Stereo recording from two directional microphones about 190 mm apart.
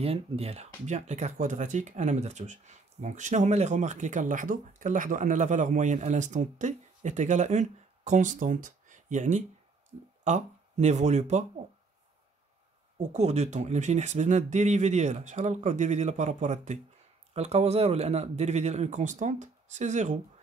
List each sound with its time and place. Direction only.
0.0 s speech: 30° right (ahead or behind)
12.9 s speech: 35° right (ahead or behind)